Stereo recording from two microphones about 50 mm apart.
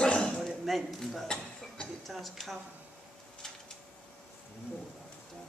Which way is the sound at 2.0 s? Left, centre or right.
Centre.